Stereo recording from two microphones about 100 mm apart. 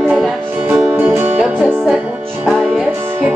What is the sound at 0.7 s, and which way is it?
Music, 15° right (ahead or behind).